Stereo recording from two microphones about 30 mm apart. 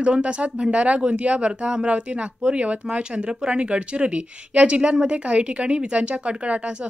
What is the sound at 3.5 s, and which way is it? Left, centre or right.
A woman's voice, right.